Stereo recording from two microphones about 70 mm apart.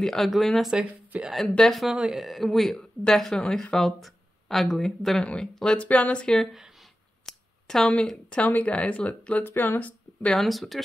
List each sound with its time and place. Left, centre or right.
0.0 s speech: centre
1.1 s a woman's voice: right
1.6 s speech: centre
1.9 s speech: centre
5.2 s speech: centre
6.5 s a sound: centre
7.2 s speech: centre
9.4 s speech: left
10.3 s speech: centre